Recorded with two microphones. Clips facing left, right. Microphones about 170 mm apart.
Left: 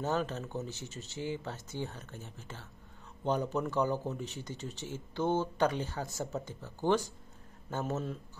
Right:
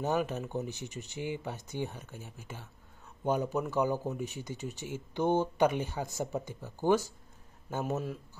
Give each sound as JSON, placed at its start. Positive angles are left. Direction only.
{"t": 0.0, "sound": "speech", "side_deg": -15}